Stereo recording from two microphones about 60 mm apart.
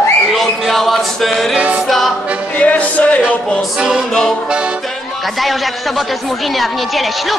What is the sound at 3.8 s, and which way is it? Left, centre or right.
Music, centre.